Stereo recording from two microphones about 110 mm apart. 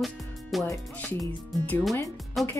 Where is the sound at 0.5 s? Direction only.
Centre (ahead or behind).